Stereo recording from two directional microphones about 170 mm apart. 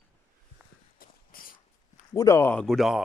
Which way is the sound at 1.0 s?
60° left (ahead or behind).